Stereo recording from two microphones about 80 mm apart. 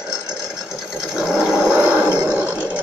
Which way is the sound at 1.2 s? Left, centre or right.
Centre.